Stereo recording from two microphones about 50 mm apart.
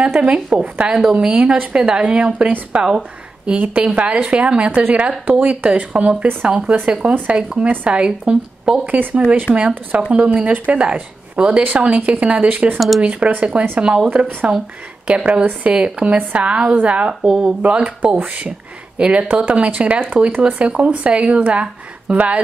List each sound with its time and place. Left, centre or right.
0.2 s speech: right
12.7 s speech: centre
13.0 s speech: right
13.7 s speech: centre
14.0 s speech: right
15.0 s speech: right
17.3 s speech: centre
17.6 s speech: right
20.2 s speech: right
20.5 s speech: right